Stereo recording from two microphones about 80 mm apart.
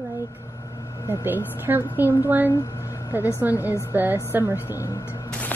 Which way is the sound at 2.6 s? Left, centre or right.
Left.